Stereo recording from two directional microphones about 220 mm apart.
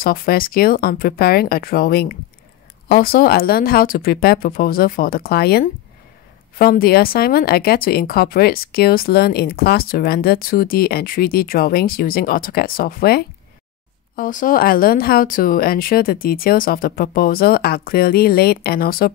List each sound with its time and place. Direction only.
0.0 s speech: 40° left (ahead or behind)